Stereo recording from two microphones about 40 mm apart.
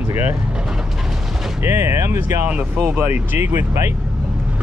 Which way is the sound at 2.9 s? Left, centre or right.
Right.